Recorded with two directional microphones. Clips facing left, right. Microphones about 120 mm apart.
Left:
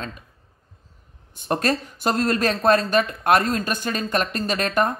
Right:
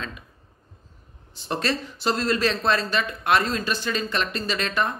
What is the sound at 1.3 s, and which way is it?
Speech, 50° left (ahead or behind).